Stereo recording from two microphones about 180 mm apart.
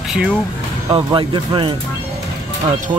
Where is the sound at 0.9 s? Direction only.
25° right (ahead or behind).